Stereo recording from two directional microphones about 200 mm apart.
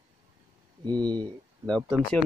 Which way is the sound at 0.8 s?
20° right (ahead or behind).